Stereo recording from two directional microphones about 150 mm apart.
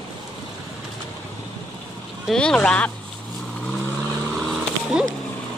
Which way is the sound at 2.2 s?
5° left (ahead or behind).